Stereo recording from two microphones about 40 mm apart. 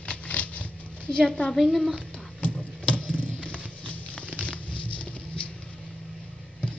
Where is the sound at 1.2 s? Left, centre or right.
Left.